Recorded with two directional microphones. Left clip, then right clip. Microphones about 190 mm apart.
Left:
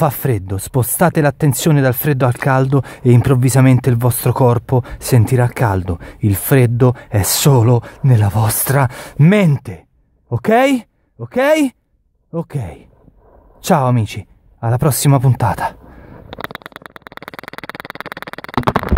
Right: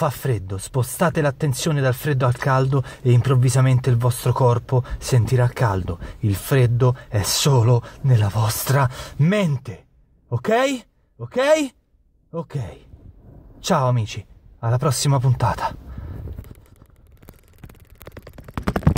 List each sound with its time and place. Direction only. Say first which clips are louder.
0.0 s speech: left 6 dB; 40° left (ahead or behind)